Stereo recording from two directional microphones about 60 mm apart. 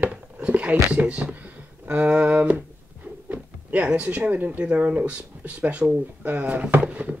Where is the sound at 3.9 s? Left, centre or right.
Right.